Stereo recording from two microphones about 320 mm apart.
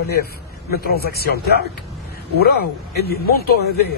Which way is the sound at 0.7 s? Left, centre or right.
Left.